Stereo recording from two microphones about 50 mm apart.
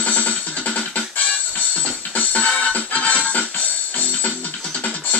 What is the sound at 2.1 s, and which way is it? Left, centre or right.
Music, left.